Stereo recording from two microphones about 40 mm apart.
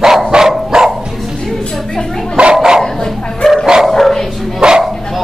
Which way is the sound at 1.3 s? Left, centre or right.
Centre.